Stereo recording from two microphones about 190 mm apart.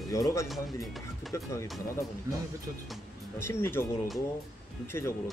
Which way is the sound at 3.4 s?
15° left (ahead or behind).